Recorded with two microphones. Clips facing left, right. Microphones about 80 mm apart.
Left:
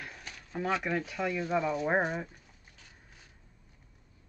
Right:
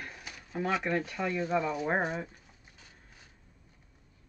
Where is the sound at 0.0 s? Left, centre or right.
Centre.